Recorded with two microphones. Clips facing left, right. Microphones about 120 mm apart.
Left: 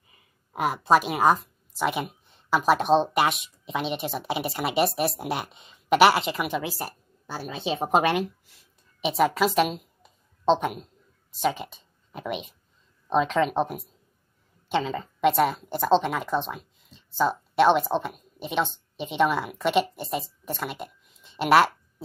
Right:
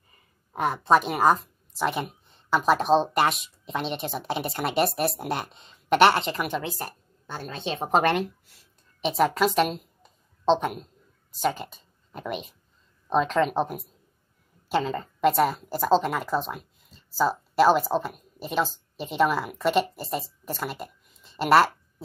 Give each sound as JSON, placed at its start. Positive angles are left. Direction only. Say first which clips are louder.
{"t": 0.5, "sound": "a woman's voice", "louder": "even", "side_deg": 5}